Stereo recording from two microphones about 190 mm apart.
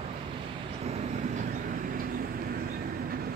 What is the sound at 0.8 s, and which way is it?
Vehicle, 35° right (ahead or behind).